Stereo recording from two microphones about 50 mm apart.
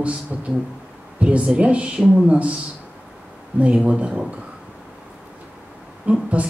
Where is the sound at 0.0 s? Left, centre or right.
Right.